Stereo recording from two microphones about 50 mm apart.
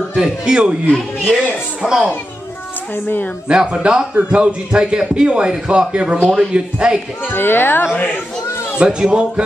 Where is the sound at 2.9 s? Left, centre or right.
Left.